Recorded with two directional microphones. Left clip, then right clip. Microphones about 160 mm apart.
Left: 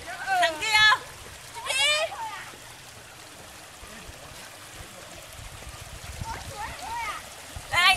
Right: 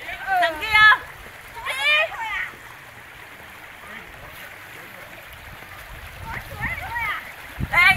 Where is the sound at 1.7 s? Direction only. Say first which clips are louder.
Right 4 dB; 20° left (ahead or behind).